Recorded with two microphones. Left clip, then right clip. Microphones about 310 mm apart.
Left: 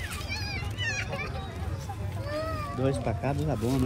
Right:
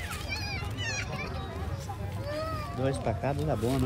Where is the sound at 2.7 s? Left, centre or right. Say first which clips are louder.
Left 1 dB; right.